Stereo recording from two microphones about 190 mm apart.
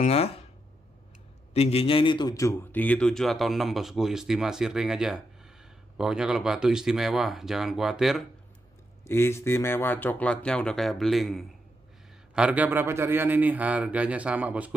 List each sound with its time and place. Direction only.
0.0 s speech: 35° left (ahead or behind)
1.5 s a man's voice: 30° left (ahead or behind); by 8.3 s centre (ahead or behind)
9.0 s a man's voice: 15° left (ahead or behind); by 14.7 s 5° right (ahead or behind)